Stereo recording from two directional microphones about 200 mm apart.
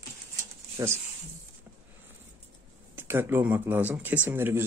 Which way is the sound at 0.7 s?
15° right (ahead or behind).